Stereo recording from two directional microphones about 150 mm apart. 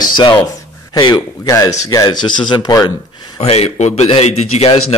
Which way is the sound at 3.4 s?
45° left (ahead or behind).